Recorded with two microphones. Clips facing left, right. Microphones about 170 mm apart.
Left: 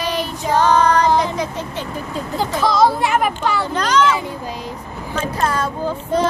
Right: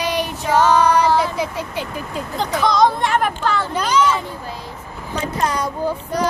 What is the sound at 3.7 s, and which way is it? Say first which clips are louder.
Speech: left 2 dB; 10° right (ahead or behind).